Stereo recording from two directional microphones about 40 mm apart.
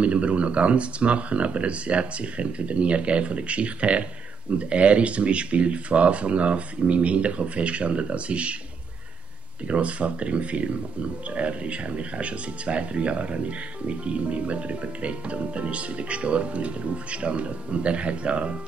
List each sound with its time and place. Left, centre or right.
0.0 s speech: right
9.7 s speech: right